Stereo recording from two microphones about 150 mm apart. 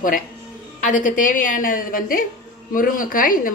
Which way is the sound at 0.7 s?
60° left (ahead or behind).